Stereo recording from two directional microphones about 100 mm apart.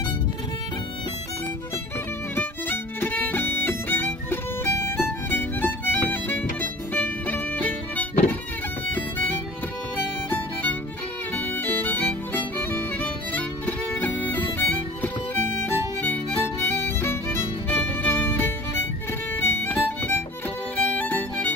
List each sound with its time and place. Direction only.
2.3 s violin: 20° left (ahead or behind)
10.3 s music: 15° left (ahead or behind)
15.6 s music: 25° left (ahead or behind)